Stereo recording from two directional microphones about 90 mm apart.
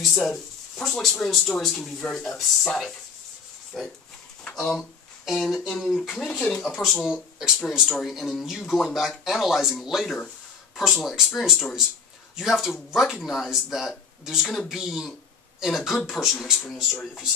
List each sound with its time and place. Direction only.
0.1 s speech: 5° left (ahead or behind)
6.2 s speech: 20° left (ahead or behind)
7.0 s speech: 5° right (ahead or behind)